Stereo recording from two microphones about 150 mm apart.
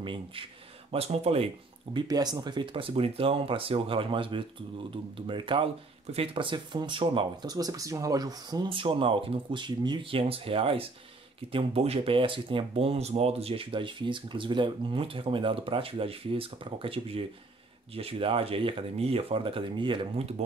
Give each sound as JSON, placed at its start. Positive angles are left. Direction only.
{"t": 0.0, "sound": "speech", "side_deg": -35}
{"t": 2.0, "sound": "speech", "side_deg": -25}